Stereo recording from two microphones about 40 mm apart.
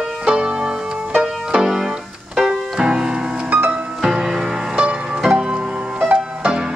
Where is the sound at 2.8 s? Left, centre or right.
Right.